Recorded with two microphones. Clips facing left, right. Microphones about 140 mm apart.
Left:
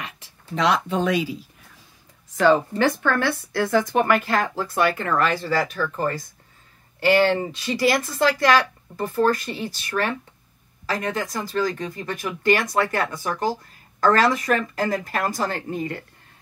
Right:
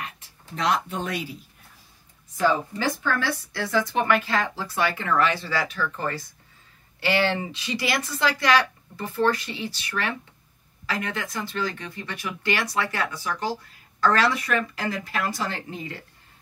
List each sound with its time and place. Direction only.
0.0 s speech: 90° left
2.3 s speech: 75° left (ahead or behind); by 16.0 s 50° left (ahead or behind)